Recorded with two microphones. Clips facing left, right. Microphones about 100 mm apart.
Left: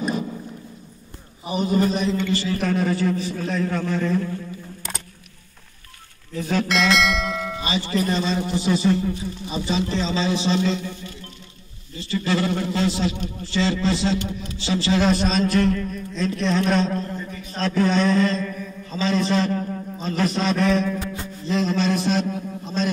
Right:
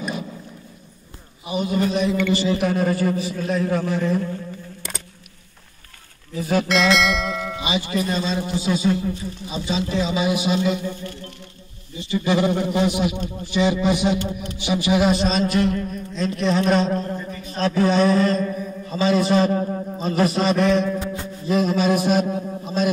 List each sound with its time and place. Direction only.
1.6 s bell: centre (ahead or behind)
2.2 s speech: 20° right (ahead or behind)
2.7 s a man's voice: 5° right (ahead or behind)
6.3 s bell: 5° right (ahead or behind)
7.6 s a man's voice: 15° right (ahead or behind)
17.1 s a sound: 10° right (ahead or behind)
18.4 s mantra: 20° right (ahead or behind)
18.9 s a man's voice: 10° right (ahead or behind)
20.0 s a man's voice: 15° right (ahead or behind)